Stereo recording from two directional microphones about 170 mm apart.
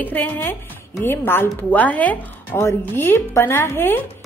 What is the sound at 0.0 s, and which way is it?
Speech, 10° left (ahead or behind).